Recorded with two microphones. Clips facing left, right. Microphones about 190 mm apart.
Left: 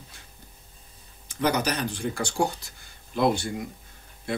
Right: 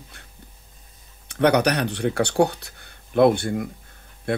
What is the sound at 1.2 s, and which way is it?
Speech, 65° right (ahead or behind).